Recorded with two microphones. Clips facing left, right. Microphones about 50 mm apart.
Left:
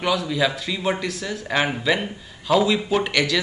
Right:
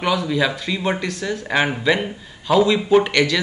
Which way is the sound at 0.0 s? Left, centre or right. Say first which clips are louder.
Right 2 dB; centre.